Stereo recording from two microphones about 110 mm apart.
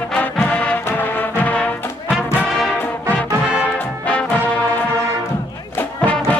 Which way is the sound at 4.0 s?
10° left (ahead or behind).